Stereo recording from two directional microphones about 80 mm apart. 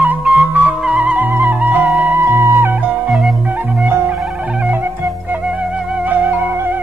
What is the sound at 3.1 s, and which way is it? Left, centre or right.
Music, centre.